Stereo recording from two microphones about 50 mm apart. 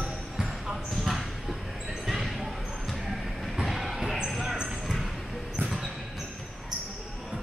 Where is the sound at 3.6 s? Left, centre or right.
Centre.